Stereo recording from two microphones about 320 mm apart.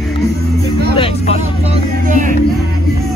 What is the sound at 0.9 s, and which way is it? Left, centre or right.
Speech, centre.